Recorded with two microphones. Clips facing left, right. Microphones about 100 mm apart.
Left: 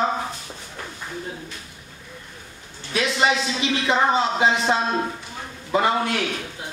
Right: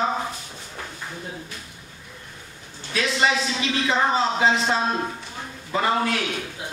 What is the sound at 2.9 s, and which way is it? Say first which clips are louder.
Speech: left 1 dB; 15° left (ahead or behind).